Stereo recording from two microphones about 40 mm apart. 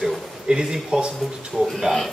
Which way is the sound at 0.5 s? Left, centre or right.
Centre.